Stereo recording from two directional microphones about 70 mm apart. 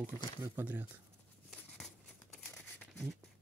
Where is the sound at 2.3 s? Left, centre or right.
Centre.